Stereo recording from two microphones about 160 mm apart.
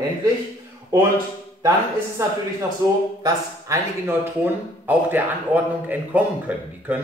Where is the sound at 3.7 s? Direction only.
20° right (ahead or behind).